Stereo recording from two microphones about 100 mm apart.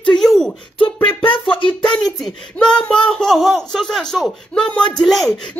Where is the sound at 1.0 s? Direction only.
60° left (ahead or behind).